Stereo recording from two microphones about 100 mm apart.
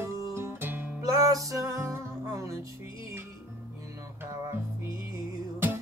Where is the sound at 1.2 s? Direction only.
35° right (ahead or behind).